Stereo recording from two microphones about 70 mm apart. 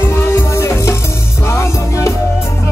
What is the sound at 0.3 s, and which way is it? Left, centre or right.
Music, left.